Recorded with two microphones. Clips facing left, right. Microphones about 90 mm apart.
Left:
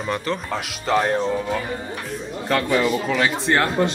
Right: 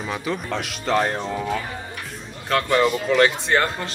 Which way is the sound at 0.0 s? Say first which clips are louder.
Left 2 dB; centre (ahead or behind).